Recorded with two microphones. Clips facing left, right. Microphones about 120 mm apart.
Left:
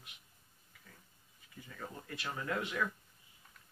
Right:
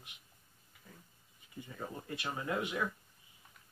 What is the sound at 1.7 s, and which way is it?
Speech, 20° right (ahead or behind).